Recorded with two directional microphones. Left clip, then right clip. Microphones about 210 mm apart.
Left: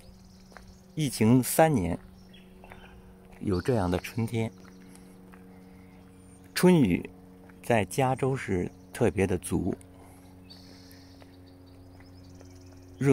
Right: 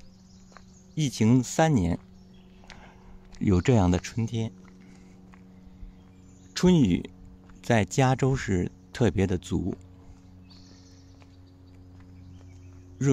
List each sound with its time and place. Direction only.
0.9 s speech: 5° right (ahead or behind)
1.7 s speech: 10° right (ahead or behind)
3.4 s speech: 15° right (ahead or behind); by 4.6 s centre (ahead or behind)
6.5 s speech: centre (ahead or behind)
13.0 s a man's voice: centre (ahead or behind)